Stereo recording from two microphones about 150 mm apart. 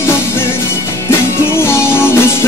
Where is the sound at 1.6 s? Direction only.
15° left (ahead or behind).